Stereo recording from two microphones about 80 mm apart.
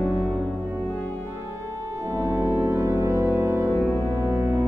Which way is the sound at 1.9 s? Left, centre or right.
Right.